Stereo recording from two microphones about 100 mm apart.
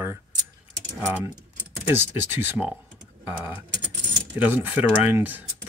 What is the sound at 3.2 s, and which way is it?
Typing, 15° right (ahead or behind).